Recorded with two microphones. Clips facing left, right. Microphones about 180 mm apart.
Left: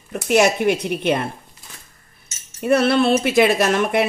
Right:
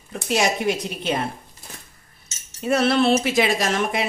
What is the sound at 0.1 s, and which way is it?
A woman's voice, 60° left (ahead or behind).